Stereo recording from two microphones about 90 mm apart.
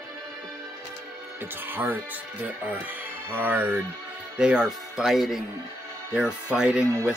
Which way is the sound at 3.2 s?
20° right (ahead or behind).